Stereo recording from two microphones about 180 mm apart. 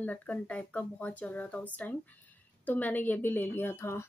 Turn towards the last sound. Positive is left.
turn(degrees=15)  # may be behind; listen again after turning